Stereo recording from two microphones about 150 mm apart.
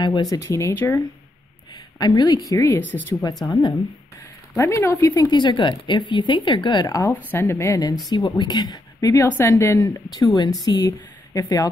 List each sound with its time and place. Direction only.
0.0 s a woman's voice: 25° left (ahead or behind)
1.7 s a sound: 25° left (ahead or behind)
2.5 s a woman's voice: 20° left (ahead or behind)
7.2 s a woman's voice: 15° left (ahead or behind)